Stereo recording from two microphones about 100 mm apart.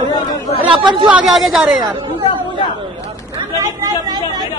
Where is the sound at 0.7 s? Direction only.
50° right (ahead or behind).